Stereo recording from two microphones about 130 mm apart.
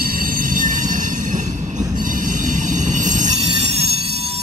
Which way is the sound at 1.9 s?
90° right.